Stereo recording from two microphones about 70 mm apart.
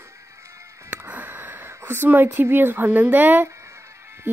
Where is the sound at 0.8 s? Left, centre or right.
Right.